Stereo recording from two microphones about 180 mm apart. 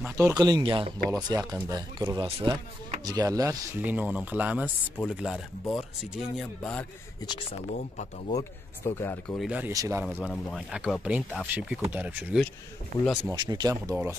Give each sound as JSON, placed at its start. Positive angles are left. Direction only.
{"t": 0.2, "sound": "speech", "side_deg": -20}
{"t": 7.7, "sound": "speech", "side_deg": 40}
{"t": 8.4, "sound": "speech", "side_deg": 15}
{"t": 9.4, "sound": "speech", "side_deg": -10}
{"t": 10.0, "sound": "speech", "side_deg": 0}
{"t": 12.9, "sound": "speech", "side_deg": -50}
{"t": 13.3, "sound": "speech", "side_deg": -20}